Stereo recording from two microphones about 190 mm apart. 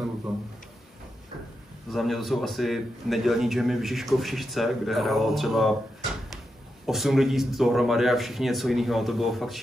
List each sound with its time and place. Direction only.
1.9 s a man's voice: centre (ahead or behind)
6.9 s a man's voice: centre (ahead or behind)